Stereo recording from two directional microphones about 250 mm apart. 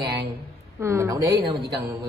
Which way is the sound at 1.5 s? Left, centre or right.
Right.